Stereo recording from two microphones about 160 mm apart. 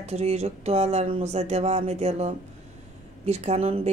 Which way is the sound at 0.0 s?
40° right (ahead or behind).